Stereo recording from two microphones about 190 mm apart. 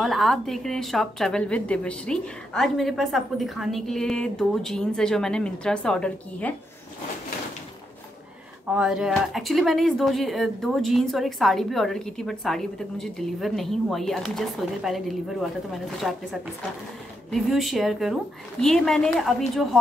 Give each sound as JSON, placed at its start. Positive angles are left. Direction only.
{"t": 0.0, "sound": "speech", "side_deg": 0}
{"t": 8.6, "sound": "speech", "side_deg": -5}